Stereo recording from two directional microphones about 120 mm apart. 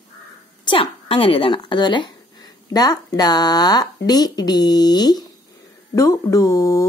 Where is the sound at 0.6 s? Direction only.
45° left (ahead or behind).